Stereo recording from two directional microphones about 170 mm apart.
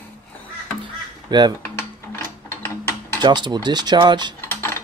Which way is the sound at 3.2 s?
25° right (ahead or behind).